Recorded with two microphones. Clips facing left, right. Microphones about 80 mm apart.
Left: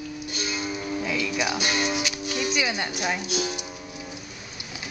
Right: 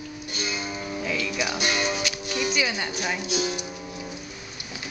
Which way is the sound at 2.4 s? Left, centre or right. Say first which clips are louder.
Even; centre.